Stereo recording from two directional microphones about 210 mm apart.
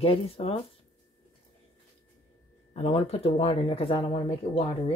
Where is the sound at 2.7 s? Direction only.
25° left (ahead or behind).